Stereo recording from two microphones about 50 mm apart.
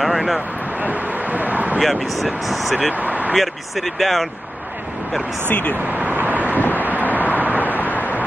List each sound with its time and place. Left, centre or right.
0.0 s speech: centre
0.7 s speech: right
1.8 s speech: centre
2.9 s speech: right
3.3 s speech: centre
5.5 s speech: left
5.9 s vehicle: right
6.6 s vehicle: left
7.3 s vehicle: right
7.6 s vehicle: left